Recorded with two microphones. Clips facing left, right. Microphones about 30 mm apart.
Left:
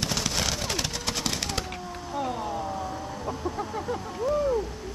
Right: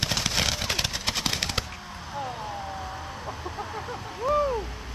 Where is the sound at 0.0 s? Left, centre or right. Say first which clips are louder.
Right 2 dB; centre.